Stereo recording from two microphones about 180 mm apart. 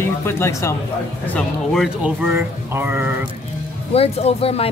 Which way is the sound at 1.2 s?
5° left (ahead or behind).